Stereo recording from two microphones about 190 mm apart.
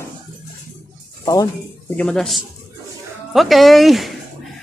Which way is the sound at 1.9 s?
Centre (ahead or behind).